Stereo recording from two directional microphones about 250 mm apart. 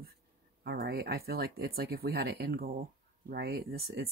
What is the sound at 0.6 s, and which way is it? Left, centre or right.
Speech, right.